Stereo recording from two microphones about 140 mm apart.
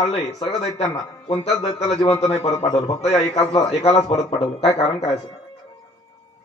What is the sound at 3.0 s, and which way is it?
A man's voice, 50° left (ahead or behind).